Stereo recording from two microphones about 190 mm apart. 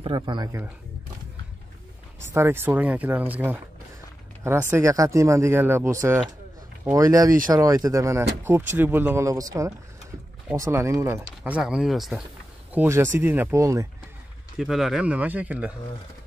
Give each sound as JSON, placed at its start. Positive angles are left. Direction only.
{"t": 0.0, "sound": "speech", "side_deg": -25}
{"t": 2.3, "sound": "speech", "side_deg": -10}
{"t": 12.7, "sound": "speech", "side_deg": -15}
{"t": 14.6, "sound": "speech", "side_deg": 0}